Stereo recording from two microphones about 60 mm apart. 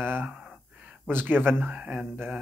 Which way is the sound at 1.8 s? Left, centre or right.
Right.